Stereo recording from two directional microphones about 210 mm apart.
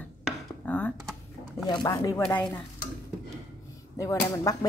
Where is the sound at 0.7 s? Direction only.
10° left (ahead or behind).